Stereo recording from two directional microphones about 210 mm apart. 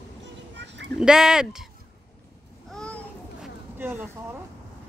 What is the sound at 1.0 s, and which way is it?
Speech, 5° right (ahead or behind).